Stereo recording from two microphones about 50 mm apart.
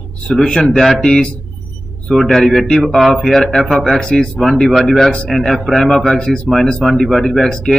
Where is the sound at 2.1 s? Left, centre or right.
Centre.